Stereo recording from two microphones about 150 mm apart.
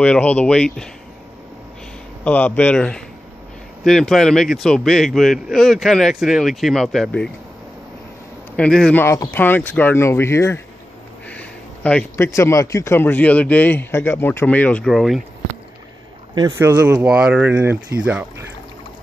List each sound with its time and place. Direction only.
0.0 s a man's voice: 10° left (ahead or behind)
2.2 s a man's voice: 10° left (ahead or behind)
8.5 s a man's voice: 5° left (ahead or behind)
9.0 s a man's voice: 20° left (ahead or behind)
11.2 s a sound: 10° left (ahead or behind)
12.3 s a man's voice: 20° left (ahead or behind); by 15.2 s centre (ahead or behind)
16.3 s speech: 25° right (ahead or behind)
16.6 s speech: 15° right (ahead or behind)